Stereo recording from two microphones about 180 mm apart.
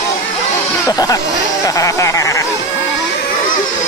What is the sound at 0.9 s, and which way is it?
Speech, 20° left (ahead or behind).